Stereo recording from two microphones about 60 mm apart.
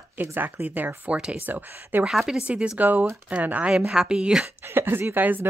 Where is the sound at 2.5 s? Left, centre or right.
Centre.